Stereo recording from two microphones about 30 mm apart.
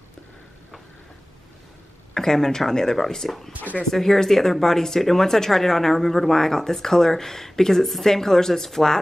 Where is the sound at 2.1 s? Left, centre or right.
Centre.